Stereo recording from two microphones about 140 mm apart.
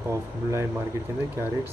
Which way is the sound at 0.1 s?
20° right (ahead or behind).